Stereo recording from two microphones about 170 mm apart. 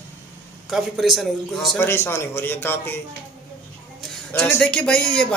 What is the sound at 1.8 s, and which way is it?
A man's voice, 15° left (ahead or behind).